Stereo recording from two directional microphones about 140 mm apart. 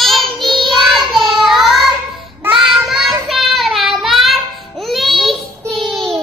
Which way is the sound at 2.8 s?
Centre (ahead or behind).